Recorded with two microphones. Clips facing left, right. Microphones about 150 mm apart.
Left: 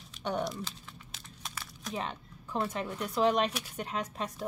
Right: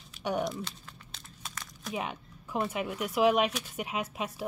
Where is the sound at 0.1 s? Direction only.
5° right (ahead or behind).